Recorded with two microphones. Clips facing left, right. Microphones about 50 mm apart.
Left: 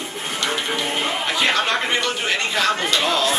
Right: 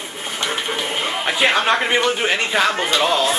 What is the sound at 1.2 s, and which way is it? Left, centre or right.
A man's voice, centre.